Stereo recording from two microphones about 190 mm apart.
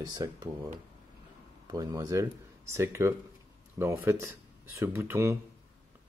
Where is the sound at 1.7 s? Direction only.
20° right (ahead or behind).